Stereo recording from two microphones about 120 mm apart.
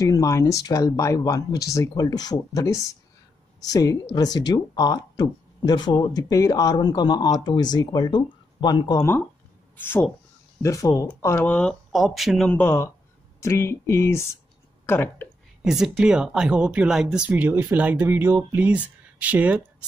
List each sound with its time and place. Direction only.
0.0 s speech: 30° left (ahead or behind)
9.8 s speech: 15° left (ahead or behind)
11.4 s speech: 10° left (ahead or behind)
11.9 s speech: centre (ahead or behind)
12.5 s speech: 20° left (ahead or behind)
15.6 s speech: 5° right (ahead or behind)